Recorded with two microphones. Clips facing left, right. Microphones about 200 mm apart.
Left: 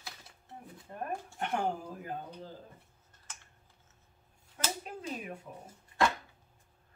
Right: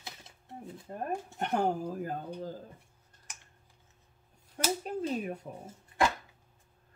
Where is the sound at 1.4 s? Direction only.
40° right (ahead or behind).